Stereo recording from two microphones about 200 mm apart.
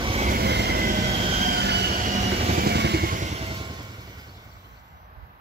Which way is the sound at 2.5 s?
55° right (ahead or behind).